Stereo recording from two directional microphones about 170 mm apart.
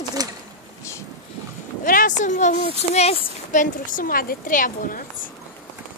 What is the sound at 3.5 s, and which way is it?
A woman's voice, 50° left (ahead or behind).